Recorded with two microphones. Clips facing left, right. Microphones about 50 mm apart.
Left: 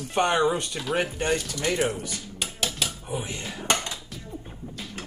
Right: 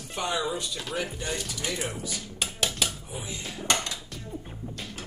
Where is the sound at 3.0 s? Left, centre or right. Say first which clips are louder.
Left 6 dB; left.